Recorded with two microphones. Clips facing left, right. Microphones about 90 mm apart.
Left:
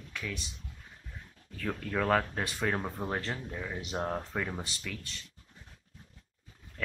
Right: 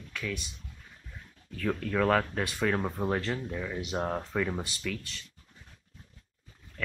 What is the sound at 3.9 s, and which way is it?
Speech, 5° right (ahead or behind).